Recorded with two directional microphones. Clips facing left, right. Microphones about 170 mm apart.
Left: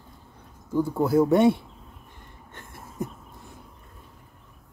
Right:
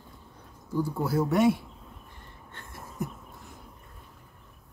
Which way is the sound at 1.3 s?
25° left (ahead or behind).